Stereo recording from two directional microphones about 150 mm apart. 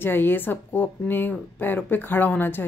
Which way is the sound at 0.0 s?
15° left (ahead or behind).